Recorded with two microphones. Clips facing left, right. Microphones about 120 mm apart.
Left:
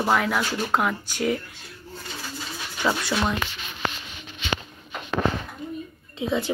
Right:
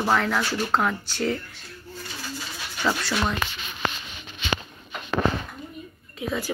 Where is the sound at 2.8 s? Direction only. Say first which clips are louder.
Left 1 dB; 5° left (ahead or behind).